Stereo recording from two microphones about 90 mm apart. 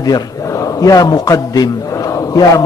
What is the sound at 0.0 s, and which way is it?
A man's voice, 40° left (ahead or behind).